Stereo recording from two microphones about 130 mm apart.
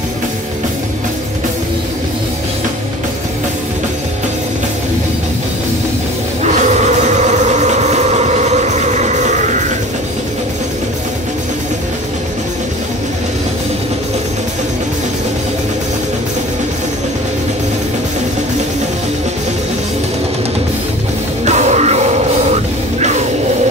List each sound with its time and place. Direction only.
7.2 s train: 65° right (ahead or behind)
21.5 s music: 60° right (ahead or behind)